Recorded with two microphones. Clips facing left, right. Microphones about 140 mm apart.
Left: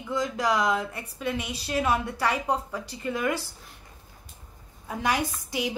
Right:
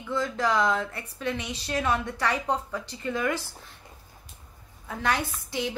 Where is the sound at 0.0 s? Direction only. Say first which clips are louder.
Even; 15° left (ahead or behind).